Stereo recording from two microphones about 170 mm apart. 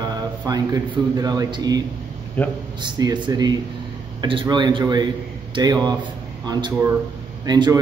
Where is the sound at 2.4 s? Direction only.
10° left (ahead or behind).